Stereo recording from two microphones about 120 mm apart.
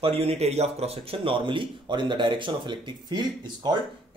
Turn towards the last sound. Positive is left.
turn(degrees=-35)  # may be behind; listen again after turning